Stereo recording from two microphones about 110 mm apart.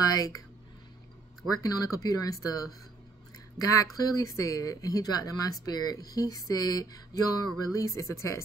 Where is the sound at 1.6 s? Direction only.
35° left (ahead or behind).